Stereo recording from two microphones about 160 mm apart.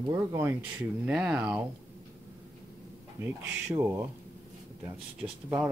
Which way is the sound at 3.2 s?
20° right (ahead or behind).